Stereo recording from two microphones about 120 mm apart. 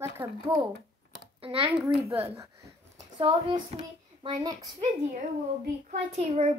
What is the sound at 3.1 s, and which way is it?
Speech, 45° right (ahead or behind).